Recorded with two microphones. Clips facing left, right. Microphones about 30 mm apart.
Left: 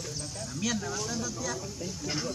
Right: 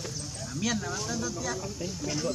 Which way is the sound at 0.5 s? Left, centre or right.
Centre.